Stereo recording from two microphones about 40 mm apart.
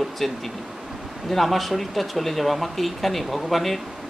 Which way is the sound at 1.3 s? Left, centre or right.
Centre.